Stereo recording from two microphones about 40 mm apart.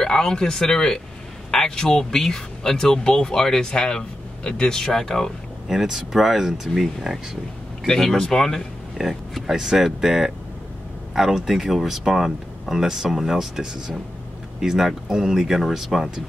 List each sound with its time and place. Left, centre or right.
0.0 s speech: centre
5.7 s speech: centre
7.8 s speech: centre
8.9 s speech: centre